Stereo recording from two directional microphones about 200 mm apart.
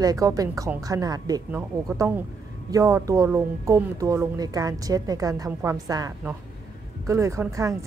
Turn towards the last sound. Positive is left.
turn(degrees=-15)  # may be behind; listen again after turning